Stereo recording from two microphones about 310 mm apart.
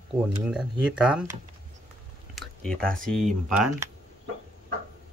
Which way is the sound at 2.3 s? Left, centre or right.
Centre.